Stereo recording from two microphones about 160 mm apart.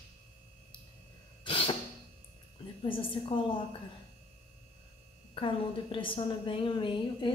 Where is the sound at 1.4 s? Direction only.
35° left (ahead or behind).